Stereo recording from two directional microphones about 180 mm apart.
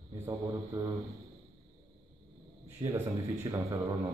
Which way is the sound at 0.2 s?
20° right (ahead or behind).